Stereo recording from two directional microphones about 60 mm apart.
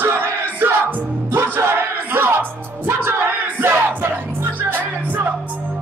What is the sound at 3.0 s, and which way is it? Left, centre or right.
Battle cry, right.